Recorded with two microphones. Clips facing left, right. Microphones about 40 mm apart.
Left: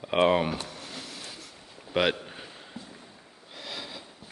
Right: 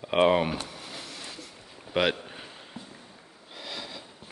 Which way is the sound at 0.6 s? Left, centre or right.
Centre.